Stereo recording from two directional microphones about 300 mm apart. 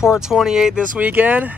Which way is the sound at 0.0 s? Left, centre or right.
Centre.